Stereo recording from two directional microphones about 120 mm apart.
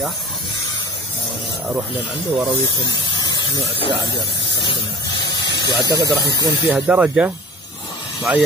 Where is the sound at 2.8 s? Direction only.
40° left (ahead or behind).